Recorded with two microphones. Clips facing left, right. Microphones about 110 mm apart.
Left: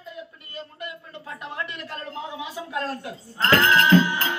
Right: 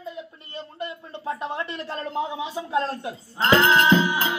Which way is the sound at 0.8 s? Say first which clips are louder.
Right 4 dB; 30° right (ahead or behind).